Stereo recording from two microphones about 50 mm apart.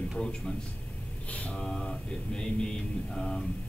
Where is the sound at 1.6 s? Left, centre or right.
Centre.